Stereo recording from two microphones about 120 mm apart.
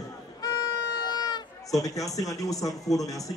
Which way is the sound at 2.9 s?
30° left (ahead or behind).